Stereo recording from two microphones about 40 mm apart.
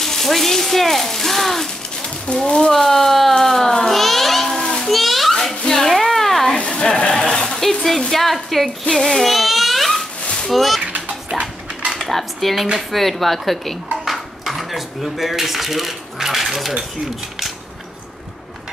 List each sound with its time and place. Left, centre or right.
0.0 s speech: centre
2.4 s speech: left
2.7 s a sound: centre
4.6 s children playing: centre
4.8 s children playing: centre
5.7 s a sound: centre
6.5 s a sound: left; by 10.0 s centre
10.5 s speech: centre
10.8 s music: right
12.0 s speech: centre